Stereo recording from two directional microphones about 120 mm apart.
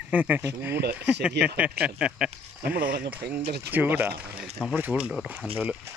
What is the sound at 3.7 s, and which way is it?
Speech, 15° right (ahead or behind).